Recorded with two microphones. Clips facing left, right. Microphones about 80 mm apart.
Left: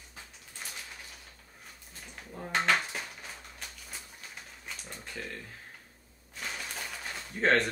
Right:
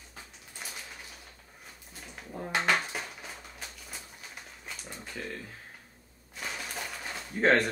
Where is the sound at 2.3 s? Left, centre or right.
Centre.